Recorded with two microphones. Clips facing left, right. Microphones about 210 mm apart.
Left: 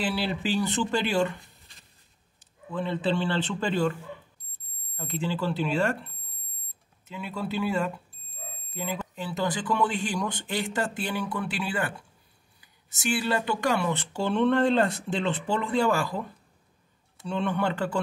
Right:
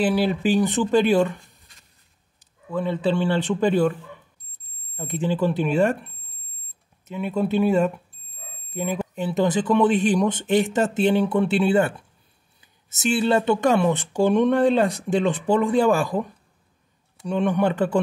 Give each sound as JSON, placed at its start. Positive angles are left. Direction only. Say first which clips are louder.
{"t": 0.0, "sound": "speech", "louder": "right 8 dB", "side_deg": -15}
{"t": 2.7, "sound": "speech", "louder": "right 5 dB", "side_deg": -10}
{"t": 4.9, "sound": "speech", "louder": "right 6 dB", "side_deg": -20}
{"t": 17.3, "sound": "speech", "louder": "right 6 dB", "side_deg": -15}